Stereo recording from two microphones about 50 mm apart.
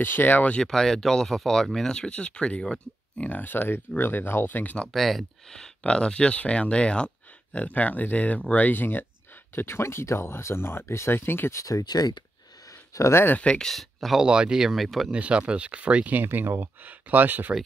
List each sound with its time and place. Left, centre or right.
0.0 s speech: left
0.7 s speech: centre
2.0 s speech: left
3.2 s speech: left
4.8 s speech: centre
5.8 s speech: centre; by 9.0 s left
9.6 s speech: left
12.9 s speech: left
13.6 s speech: centre
14.2 s speech: centre
14.7 s speech: centre
15.0 s speech: right
16.3 s speech: right